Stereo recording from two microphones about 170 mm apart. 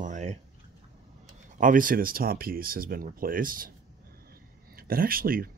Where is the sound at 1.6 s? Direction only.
55° right (ahead or behind).